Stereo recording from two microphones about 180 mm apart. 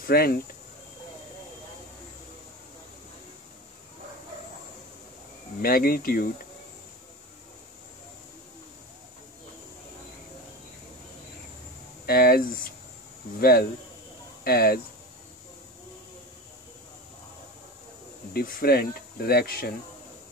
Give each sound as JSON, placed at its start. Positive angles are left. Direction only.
{"t": 0.0, "sound": "speech", "side_deg": 55}
{"t": 5.6, "sound": "speech", "side_deg": 55}
{"t": 12.1, "sound": "speech", "side_deg": 55}
{"t": 18.3, "sound": "speech", "side_deg": 60}